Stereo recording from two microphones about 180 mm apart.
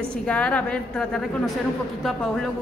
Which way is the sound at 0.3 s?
5° left (ahead or behind).